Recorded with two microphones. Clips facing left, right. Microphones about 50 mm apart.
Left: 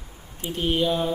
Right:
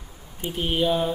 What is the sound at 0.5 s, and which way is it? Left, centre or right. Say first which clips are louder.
Speech: even; centre.